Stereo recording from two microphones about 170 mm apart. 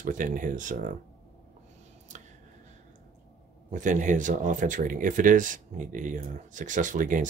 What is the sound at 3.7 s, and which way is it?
Speech, 50° right (ahead or behind).